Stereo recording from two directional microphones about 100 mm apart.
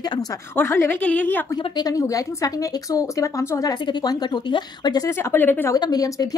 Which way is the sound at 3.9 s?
45° left (ahead or behind).